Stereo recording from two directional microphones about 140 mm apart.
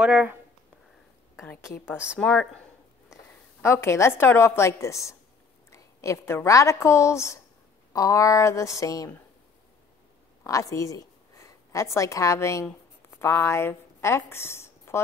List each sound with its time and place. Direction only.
0.0 s speech: 5° right (ahead or behind)
2.1 s speech: 5° left (ahead or behind)
3.6 s a woman's voice: 20° left (ahead or behind)
10.4 s a woman's voice: 25° left (ahead or behind)